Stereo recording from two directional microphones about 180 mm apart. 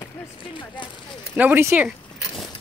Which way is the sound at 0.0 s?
25° left (ahead or behind).